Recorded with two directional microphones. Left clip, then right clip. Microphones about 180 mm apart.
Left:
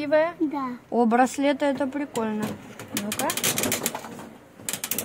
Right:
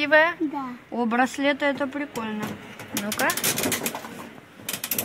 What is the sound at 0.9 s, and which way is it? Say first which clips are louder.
Speech: left 3 dB; 85° left.